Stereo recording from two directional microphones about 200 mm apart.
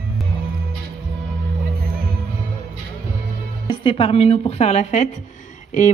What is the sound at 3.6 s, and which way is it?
Speech, 25° left (ahead or behind).